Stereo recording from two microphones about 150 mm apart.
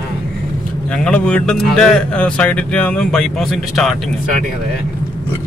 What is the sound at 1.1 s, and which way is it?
Speech, 10° left (ahead or behind).